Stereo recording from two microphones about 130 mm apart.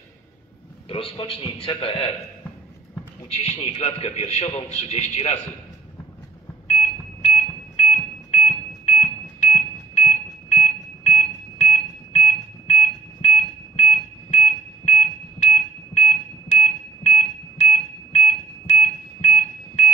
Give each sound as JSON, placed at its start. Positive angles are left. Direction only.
{"t": 0.8, "sound": "a man's voice", "side_deg": 45}
{"t": 3.3, "sound": "a man's voice", "side_deg": 55}
{"t": 6.7, "sound": "smoke detector", "side_deg": 60}